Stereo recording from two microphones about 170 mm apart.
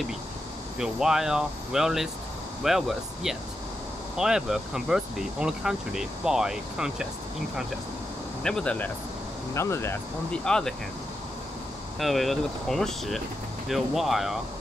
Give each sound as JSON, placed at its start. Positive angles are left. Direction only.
{"t": 0.7, "sound": "speech", "side_deg": -5}
{"t": 4.2, "sound": "speech", "side_deg": -5}
{"t": 8.4, "sound": "speech", "side_deg": 5}
{"t": 10.4, "sound": "speech", "side_deg": 5}
{"t": 12.0, "sound": "speech", "side_deg": 0}